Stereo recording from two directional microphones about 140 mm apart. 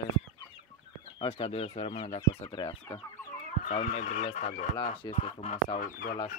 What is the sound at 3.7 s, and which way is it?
Speech, 60° left (ahead or behind).